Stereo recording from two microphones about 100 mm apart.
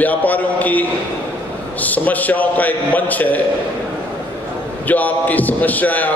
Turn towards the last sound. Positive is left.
turn(degrees=15)  # may be behind; listen again after turning